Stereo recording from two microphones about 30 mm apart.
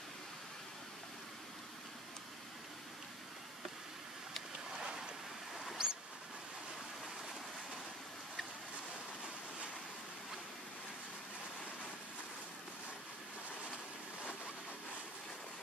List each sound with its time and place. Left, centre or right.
4.7 s boat: centre
5.8 s vehicle: right